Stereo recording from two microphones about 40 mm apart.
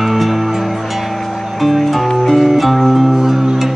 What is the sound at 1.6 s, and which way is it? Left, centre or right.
Music, centre.